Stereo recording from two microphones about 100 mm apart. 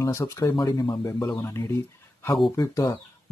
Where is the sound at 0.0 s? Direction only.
30° left (ahead or behind).